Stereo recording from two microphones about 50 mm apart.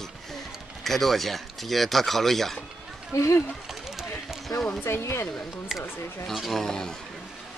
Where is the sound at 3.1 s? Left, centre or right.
Left.